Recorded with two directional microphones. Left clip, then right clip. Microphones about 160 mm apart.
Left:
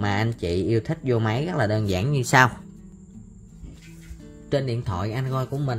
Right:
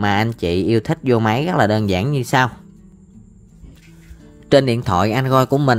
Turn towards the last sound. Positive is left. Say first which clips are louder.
# right 14 dB
turn(degrees=-60)  # may be behind; listen again after turning